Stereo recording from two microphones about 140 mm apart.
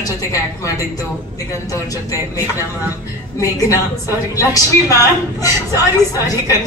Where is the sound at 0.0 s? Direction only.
25° left (ahead or behind).